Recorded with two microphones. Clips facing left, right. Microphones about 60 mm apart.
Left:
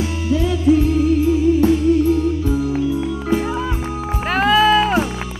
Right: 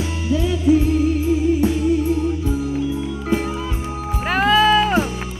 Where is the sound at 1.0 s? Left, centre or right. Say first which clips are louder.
Left 3 dB; right.